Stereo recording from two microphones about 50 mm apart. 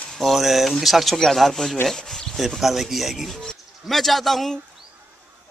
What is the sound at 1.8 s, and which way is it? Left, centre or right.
Rub, centre.